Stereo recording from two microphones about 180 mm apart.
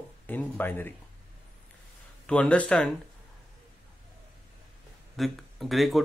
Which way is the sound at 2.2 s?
5° left (ahead or behind).